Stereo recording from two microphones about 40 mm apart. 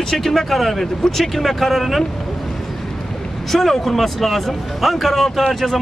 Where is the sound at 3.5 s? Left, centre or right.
Centre.